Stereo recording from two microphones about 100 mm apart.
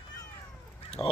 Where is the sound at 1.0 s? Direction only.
60° left (ahead or behind).